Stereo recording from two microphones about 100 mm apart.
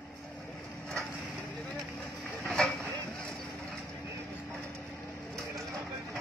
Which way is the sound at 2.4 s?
Centre (ahead or behind).